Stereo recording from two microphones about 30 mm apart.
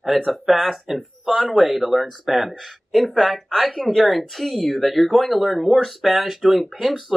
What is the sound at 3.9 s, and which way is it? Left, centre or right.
Speech, centre.